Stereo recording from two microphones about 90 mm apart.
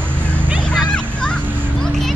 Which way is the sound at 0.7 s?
10° left (ahead or behind).